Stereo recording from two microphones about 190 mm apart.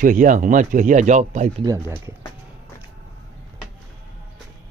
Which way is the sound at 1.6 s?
15° right (ahead or behind).